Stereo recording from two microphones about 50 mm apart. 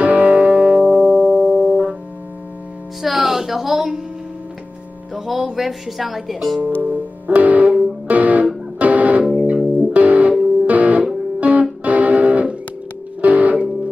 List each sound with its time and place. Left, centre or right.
0.0 s music: right
3.0 s music: centre
5.1 s speech: centre
6.8 s music: right
9.2 s music: centre
9.8 s music: right